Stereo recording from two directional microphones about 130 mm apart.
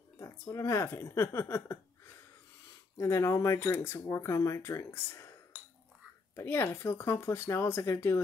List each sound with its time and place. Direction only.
0.2 s speech: 25° left (ahead or behind)
3.0 s speech: 20° left (ahead or behind)